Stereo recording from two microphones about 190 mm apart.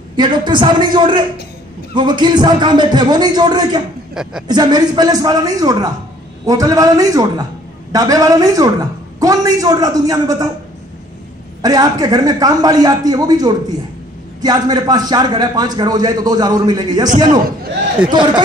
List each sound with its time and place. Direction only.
0.1 s a man's voice: 25° right (ahead or behind)
4.1 s a man's voice: 5° right (ahead or behind)
4.5 s a man's voice: 20° right (ahead or behind)
11.6 s a man's voice: 20° right (ahead or behind)
18.1 s a man's voice: 25° right (ahead or behind)